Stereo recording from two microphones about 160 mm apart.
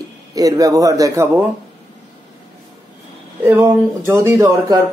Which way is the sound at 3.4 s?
15° right (ahead or behind).